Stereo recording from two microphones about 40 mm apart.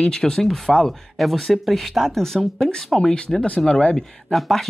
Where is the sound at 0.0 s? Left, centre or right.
Centre.